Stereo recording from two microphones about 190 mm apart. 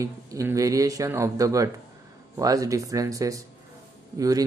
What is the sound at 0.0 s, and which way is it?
Speech, 15° right (ahead or behind).